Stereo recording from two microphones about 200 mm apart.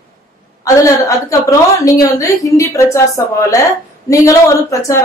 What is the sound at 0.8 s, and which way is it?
A woman's voice, 15° left (ahead or behind).